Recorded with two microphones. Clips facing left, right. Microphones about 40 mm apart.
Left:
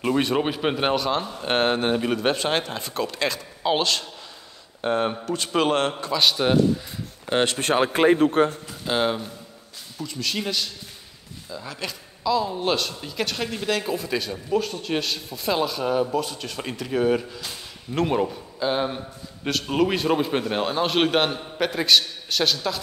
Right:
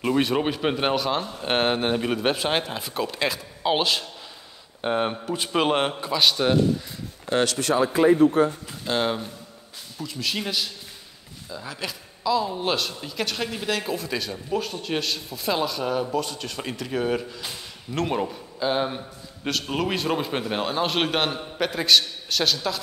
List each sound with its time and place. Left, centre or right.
0.0 s a man's voice: centre
6.2 s speech: centre
7.2 s a man's voice: left
8.8 s speech: centre